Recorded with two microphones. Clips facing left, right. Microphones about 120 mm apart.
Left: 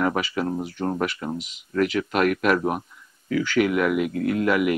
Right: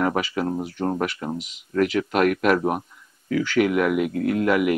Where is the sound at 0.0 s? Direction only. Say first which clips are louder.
Right 1 dB; 35° right (ahead or behind).